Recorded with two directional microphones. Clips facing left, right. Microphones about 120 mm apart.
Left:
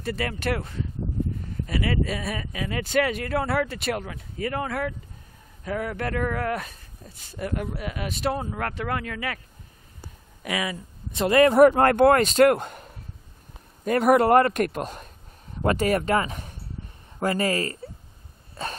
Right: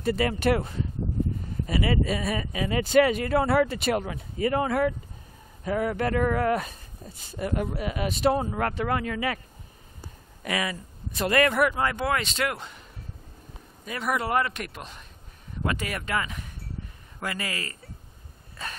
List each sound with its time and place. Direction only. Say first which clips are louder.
0.0 s speech: right 4 dB; 5° right (ahead or behind)
10.4 s speech: left 1 dB; 10° left (ahead or behind)
11.1 s speech: left 5 dB; 25° left (ahead or behind)
11.7 s a man's voice: left 9 dB; 55° left (ahead or behind)
13.8 s a man's voice: left 10 dB; 50° left (ahead or behind)
18.6 s throat clearing: left 5 dB; 30° left (ahead or behind)